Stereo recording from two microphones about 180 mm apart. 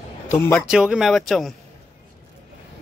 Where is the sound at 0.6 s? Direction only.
5° right (ahead or behind).